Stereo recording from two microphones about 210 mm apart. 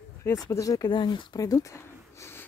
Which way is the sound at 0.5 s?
15° left (ahead or behind).